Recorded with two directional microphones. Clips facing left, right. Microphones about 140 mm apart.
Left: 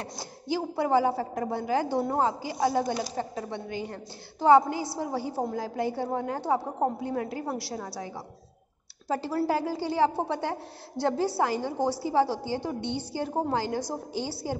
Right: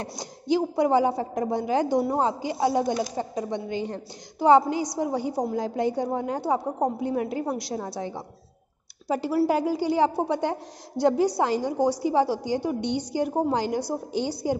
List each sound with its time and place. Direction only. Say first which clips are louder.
0.0 s a woman's voice: right 3 dB; 20° right (ahead or behind)